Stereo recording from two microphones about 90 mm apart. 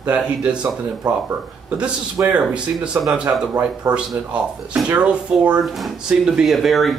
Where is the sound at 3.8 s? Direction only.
40° right (ahead or behind).